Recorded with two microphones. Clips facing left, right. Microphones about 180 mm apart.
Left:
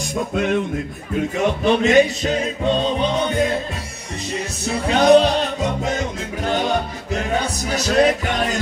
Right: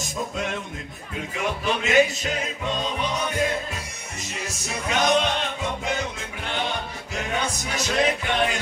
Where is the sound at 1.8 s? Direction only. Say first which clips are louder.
Left 3 dB; 35° left (ahead or behind).